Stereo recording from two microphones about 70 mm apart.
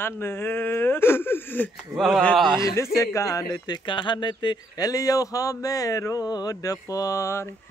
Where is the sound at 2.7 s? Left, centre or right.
Left.